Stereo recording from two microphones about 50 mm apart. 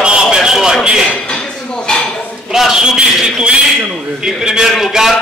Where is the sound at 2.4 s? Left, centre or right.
Centre.